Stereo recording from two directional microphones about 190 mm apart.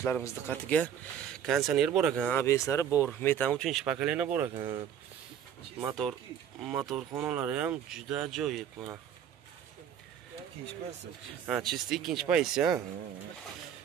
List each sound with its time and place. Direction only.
0.0 s speech: 10° left (ahead or behind); by 2.2 s 5° right (ahead or behind)
2.2 s speech: 10° left (ahead or behind); by 4.5 s 5° right (ahead or behind)
4.6 s speech: 25° right (ahead or behind)
5.8 s speech: 15° right (ahead or behind)
11.4 s speech: 5° right (ahead or behind)